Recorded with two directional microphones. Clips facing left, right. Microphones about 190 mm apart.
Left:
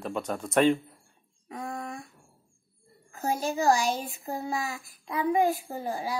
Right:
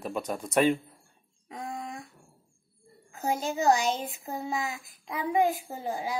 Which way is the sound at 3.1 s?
20° right (ahead or behind).